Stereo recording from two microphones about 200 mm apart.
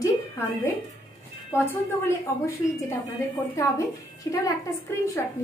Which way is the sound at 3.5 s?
15° left (ahead or behind).